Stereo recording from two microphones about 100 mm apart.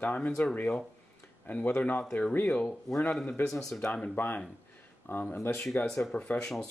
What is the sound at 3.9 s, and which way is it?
Speech, 15° left (ahead or behind).